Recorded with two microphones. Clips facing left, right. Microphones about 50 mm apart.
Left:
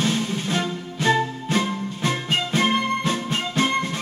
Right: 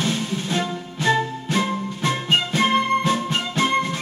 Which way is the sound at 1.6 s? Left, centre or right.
Right.